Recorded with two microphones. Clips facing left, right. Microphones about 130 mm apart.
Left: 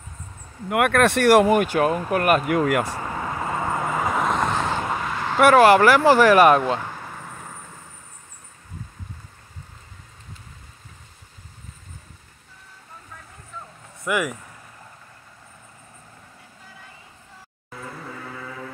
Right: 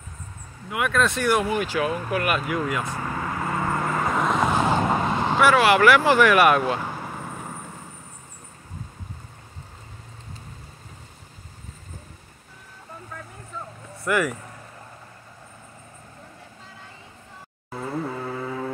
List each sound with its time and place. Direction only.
0.7 s speech: 60° left (ahead or behind)
3.0 s vehicle: 15° left (ahead or behind); by 4.7 s 10° right (ahead or behind)
4.7 s vehicle: 30° right (ahead or behind)
5.4 s speech: 45° left (ahead or behind)
6.8 s vehicle: 15° right (ahead or behind)
14.0 s speech: 10° left (ahead or behind)